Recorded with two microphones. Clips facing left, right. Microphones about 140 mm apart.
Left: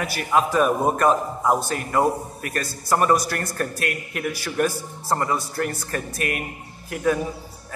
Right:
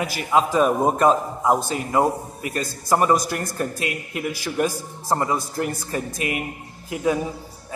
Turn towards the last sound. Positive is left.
turn(degrees=-15)  # may be behind; listen again after turning